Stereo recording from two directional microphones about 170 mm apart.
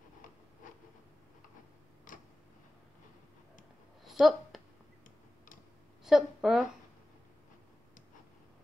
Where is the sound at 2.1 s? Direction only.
50° left (ahead or behind).